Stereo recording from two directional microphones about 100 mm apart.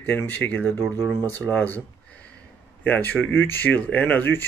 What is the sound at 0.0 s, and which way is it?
Speech, 20° left (ahead or behind).